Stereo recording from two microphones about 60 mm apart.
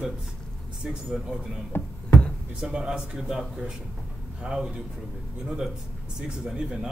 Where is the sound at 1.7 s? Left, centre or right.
Left.